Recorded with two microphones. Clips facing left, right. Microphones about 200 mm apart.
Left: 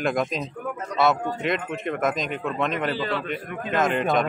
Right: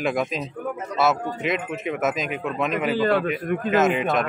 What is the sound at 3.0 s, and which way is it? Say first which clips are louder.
Speech: right 7 dB; 50° right (ahead or behind).